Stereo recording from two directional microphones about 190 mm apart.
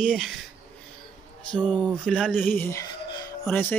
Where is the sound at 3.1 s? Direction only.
20° left (ahead or behind).